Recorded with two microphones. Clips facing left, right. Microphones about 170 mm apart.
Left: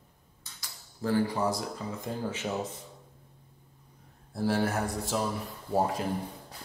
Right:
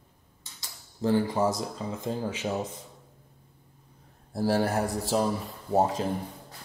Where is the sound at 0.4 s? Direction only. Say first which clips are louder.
Right 1 dB; 25° right (ahead or behind).